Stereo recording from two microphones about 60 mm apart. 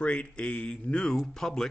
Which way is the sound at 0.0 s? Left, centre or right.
Centre.